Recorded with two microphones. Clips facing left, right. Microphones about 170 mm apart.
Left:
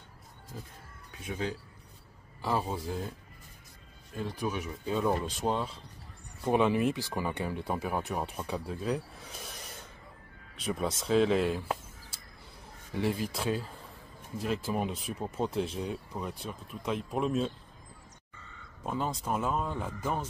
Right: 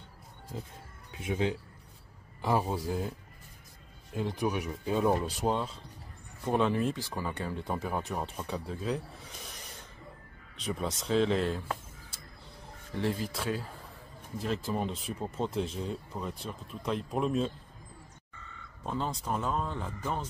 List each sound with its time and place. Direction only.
1.1 s speech: 25° right (ahead or behind)
2.4 s speech: 10° right (ahead or behind)
4.1 s speech: 20° right (ahead or behind)
6.4 s speech: 10° left (ahead or behind)
10.6 s speech: 5° left (ahead or behind)
12.9 s speech: 10° left (ahead or behind)
18.9 s speech: 10° left (ahead or behind)